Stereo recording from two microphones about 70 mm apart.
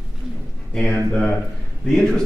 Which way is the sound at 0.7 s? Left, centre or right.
Centre.